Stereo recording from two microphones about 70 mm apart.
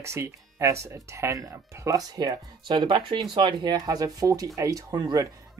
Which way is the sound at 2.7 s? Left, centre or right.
Right.